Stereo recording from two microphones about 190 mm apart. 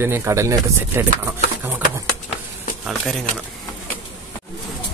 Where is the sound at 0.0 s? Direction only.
10° right (ahead or behind).